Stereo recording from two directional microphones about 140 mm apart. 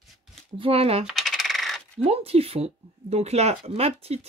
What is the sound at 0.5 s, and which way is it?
Speech, 40° right (ahead or behind).